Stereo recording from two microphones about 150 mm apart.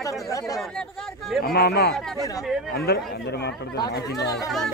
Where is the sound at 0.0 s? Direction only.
20° left (ahead or behind).